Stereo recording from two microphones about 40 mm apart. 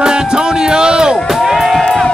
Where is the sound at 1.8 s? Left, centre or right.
Centre.